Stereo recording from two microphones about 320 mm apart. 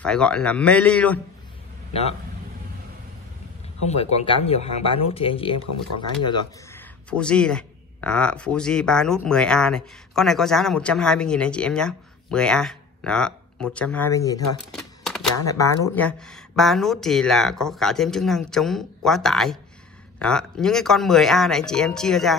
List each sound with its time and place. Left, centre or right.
0.0 s speech: centre
3.9 s speech: centre
14.7 s typewriter: centre
15.4 s speech: centre